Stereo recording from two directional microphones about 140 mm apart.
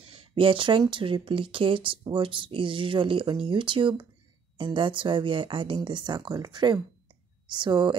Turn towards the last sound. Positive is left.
turn(degrees=-35)  # may be behind; listen again after turning